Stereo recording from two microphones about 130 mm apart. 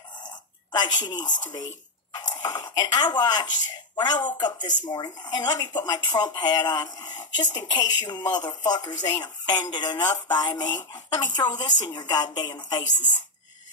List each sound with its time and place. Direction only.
0.7 s speech: 30° left (ahead or behind)